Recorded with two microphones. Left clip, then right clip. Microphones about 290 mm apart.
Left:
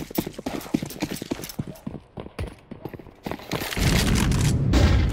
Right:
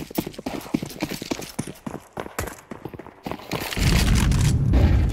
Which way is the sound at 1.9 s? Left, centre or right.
Right.